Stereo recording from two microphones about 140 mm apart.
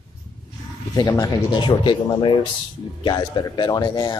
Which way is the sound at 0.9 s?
25° left (ahead or behind).